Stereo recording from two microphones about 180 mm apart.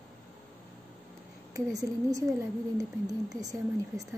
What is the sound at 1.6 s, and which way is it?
Speech, 20° right (ahead or behind).